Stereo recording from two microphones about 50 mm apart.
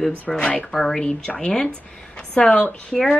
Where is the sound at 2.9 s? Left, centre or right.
Centre.